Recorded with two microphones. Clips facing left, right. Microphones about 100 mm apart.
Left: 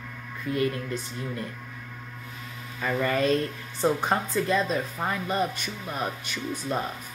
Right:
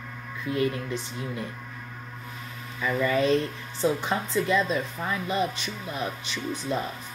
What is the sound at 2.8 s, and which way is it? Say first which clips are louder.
Speech: right 1 dB; 50° left (ahead or behind).